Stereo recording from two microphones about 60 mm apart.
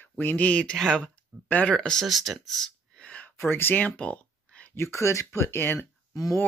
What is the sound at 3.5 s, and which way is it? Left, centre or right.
Speech, left.